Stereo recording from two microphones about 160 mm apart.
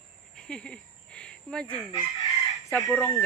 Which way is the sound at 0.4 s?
5° left (ahead or behind).